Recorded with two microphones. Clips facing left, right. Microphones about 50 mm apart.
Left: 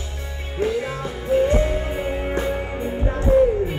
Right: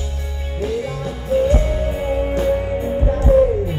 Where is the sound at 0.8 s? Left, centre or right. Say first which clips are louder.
Right 1 dB; left.